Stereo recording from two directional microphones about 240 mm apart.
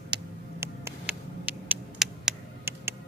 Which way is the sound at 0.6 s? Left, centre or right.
Centre.